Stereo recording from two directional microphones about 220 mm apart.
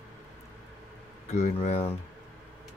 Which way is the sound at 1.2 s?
30° left (ahead or behind).